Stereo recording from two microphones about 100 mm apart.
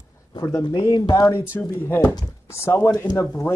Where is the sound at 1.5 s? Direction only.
25° left (ahead or behind).